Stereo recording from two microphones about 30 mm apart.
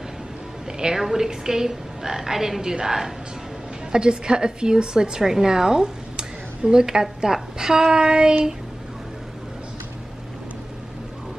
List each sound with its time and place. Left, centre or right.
0.7 s a woman's voice: right
5.2 s a woman's voice: centre